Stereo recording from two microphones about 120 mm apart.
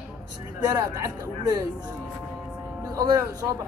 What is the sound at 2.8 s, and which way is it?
Speech, 30° right (ahead or behind).